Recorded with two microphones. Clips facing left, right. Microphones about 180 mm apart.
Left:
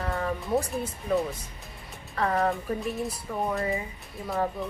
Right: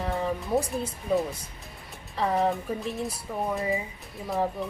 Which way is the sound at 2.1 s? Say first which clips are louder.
Right 1 dB; 15° right (ahead or behind).